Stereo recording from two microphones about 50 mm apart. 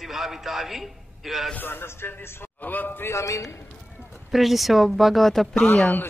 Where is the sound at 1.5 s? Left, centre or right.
Left.